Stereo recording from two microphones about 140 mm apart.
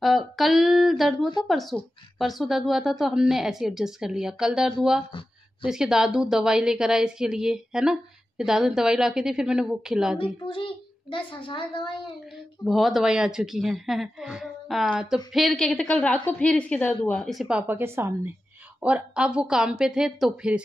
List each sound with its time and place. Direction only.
0.0 s a woman's voice: centre (ahead or behind)
10.1 s a child's voice: 40° left (ahead or behind)
12.6 s a woman's voice: centre (ahead or behind)
17.3 s speech: 5° right (ahead or behind)